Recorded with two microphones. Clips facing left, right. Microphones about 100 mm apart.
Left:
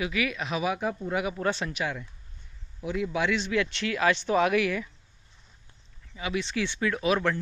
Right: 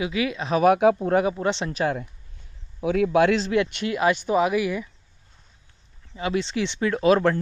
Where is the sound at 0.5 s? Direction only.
45° right (ahead or behind).